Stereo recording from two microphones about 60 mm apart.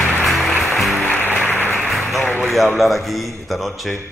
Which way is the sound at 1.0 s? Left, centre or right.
Left.